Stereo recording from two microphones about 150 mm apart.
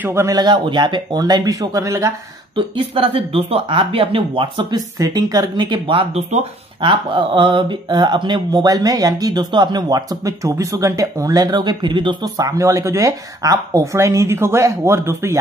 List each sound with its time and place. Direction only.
0.0 s speech: 15° right (ahead or behind)
2.5 s speech: 35° right (ahead or behind); by 15.3 s 20° right (ahead or behind)